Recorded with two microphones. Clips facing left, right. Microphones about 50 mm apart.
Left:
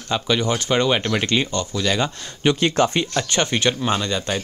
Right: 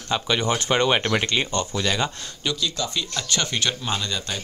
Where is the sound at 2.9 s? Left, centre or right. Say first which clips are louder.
Left 6 dB; left.